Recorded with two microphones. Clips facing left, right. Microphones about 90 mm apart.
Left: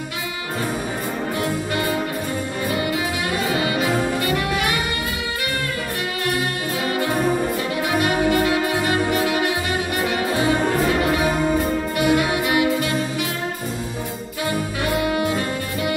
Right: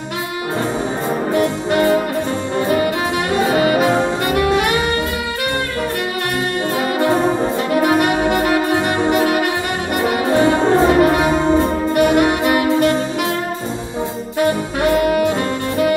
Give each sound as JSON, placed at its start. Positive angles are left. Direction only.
{"t": 1.3, "sound": "music", "side_deg": -35}
{"t": 3.5, "sound": "brass instrument", "side_deg": -40}
{"t": 4.5, "sound": "saxophone", "side_deg": -35}
{"t": 7.0, "sound": "music", "side_deg": -25}
{"t": 7.7, "sound": "music", "side_deg": -45}
{"t": 8.7, "sound": "music", "side_deg": -25}
{"t": 10.0, "sound": "brass instrument", "side_deg": -35}
{"t": 12.0, "sound": "music", "side_deg": -45}